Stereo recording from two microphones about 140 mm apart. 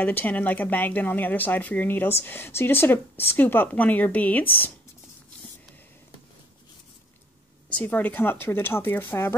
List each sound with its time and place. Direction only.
0.0 s speech: 15° left (ahead or behind)
7.7 s speech: 10° left (ahead or behind)